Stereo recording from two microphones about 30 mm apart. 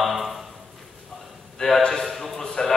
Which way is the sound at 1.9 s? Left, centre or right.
Centre.